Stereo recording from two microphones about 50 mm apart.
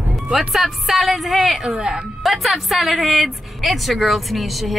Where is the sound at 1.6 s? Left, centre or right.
Centre.